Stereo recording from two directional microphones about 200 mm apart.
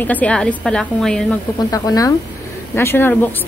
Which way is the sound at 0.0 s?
5° left (ahead or behind).